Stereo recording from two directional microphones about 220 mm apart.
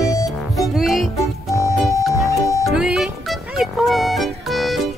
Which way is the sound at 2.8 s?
Centre (ahead or behind).